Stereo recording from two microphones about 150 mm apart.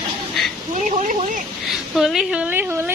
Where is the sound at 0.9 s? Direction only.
60° right (ahead or behind).